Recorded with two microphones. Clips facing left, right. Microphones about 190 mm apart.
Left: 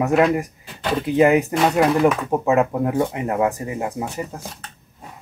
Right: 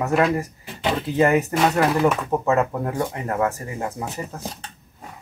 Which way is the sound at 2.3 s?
15° left (ahead or behind).